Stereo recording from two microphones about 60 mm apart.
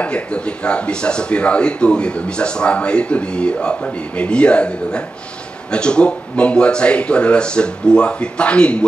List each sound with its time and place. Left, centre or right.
0.0 s speech: centre